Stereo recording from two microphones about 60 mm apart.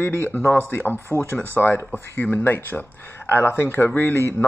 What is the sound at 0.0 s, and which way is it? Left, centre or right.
Speech, left.